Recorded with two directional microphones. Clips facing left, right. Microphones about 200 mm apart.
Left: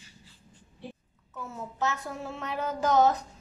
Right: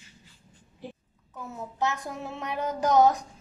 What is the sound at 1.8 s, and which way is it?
A woman's voice, 15° right (ahead or behind).